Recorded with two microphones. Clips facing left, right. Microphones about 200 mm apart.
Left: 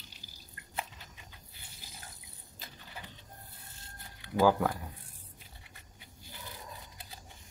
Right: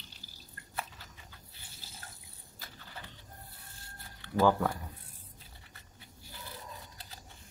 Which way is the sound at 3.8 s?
20° left (ahead or behind).